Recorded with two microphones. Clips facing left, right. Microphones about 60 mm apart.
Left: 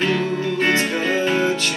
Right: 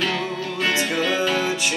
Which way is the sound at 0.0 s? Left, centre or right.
Left.